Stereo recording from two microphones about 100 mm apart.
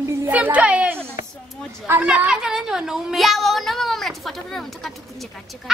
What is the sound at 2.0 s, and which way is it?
A woman's voice, 10° right (ahead or behind).